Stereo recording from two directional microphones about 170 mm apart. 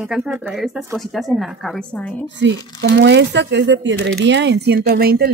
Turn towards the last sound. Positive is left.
turn(degrees=-65)  # may be behind; listen again after turning